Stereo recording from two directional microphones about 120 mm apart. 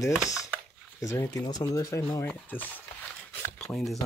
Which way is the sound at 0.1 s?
5° right (ahead or behind).